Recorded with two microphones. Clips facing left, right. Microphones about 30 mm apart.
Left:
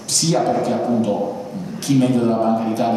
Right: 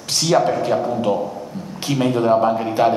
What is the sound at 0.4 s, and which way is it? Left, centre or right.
A man's voice, right.